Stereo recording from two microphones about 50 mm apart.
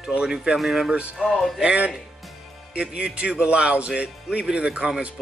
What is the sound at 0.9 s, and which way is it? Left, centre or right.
Speech, right.